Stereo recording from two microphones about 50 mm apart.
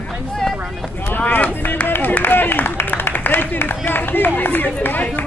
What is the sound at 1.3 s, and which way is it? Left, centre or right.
Speech, left.